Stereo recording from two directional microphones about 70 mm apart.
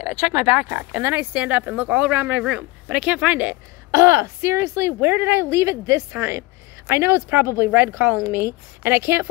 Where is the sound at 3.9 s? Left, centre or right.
Right.